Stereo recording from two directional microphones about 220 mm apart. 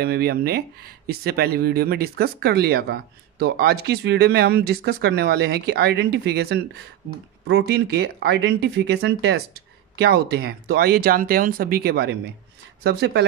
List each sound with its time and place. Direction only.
0.0 s speech: 45° right (ahead or behind)